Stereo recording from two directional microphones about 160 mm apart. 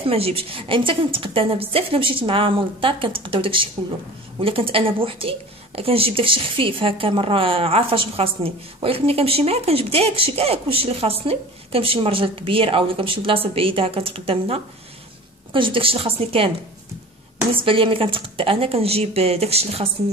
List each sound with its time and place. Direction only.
0.0 s speech: 35° right (ahead or behind)
17.6 s speech: 35° right (ahead or behind)